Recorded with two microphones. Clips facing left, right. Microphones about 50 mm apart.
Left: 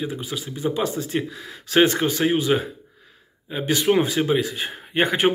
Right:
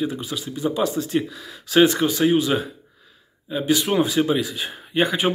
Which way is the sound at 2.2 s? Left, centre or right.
Left.